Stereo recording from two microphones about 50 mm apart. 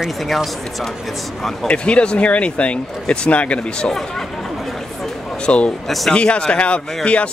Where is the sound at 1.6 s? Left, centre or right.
Left.